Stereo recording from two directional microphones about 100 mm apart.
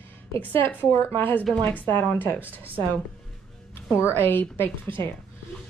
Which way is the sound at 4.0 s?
20° left (ahead or behind).